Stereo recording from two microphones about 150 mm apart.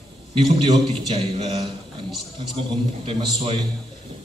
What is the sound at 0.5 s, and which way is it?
A man's voice, 35° right (ahead or behind).